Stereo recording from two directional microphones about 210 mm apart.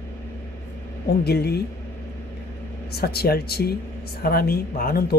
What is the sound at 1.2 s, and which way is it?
Speech, 50° left (ahead or behind).